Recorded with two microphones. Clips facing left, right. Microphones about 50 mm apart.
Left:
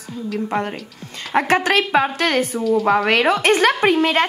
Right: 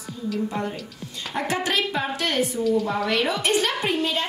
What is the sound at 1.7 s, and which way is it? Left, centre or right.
Speech, left.